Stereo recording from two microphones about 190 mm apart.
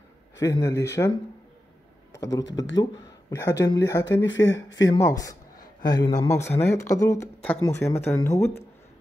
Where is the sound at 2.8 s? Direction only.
20° left (ahead or behind).